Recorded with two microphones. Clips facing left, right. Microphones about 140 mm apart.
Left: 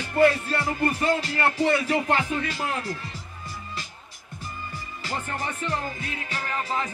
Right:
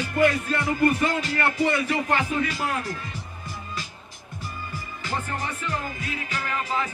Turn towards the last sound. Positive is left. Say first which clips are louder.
# right 1 dB
turn(degrees=35)  # may be behind; listen again after turning